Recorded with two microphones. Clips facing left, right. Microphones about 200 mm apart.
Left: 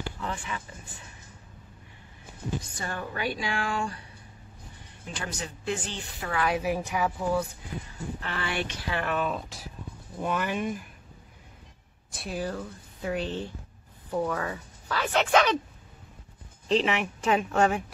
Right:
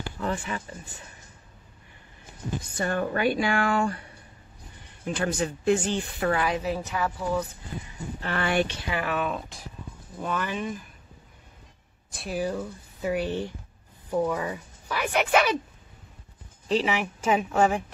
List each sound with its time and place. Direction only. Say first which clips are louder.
0.2 s speech: right 9 dB; 45° right (ahead or behind)
2.8 s speech: right 10 dB; 55° right (ahead or behind)
5.0 s speech: right 9 dB; 50° right (ahead or behind)
6.5 s a woman's voice: left 1 dB; 10° left (ahead or behind)
8.2 s speech: right 8 dB; 50° right (ahead or behind)
8.8 s a woman's voice: right 1 dB; 10° right (ahead or behind)
10.2 s a woman's voice: left 1 dB; 10° left (ahead or behind)
12.1 s speech: right 3 dB; centre (ahead or behind)
16.6 s a woman's voice: even; 5° right (ahead or behind)